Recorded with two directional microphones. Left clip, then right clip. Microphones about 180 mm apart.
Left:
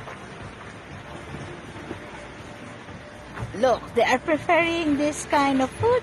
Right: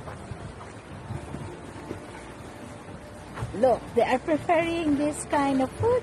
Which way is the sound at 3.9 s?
5° right (ahead or behind).